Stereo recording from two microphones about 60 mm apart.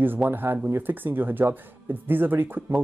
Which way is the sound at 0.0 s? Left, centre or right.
Right.